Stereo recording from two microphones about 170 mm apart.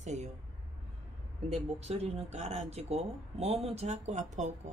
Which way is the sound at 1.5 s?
40° right (ahead or behind).